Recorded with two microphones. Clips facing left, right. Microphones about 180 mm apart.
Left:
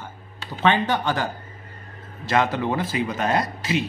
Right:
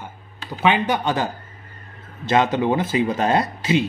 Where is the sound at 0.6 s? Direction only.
10° right (ahead or behind).